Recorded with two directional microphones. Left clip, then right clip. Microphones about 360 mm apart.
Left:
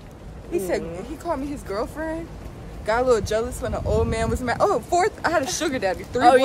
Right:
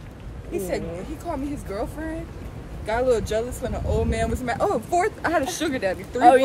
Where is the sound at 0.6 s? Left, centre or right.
Centre.